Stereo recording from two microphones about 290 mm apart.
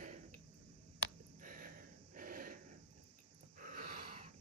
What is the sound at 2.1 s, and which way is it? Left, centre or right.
Snort, right.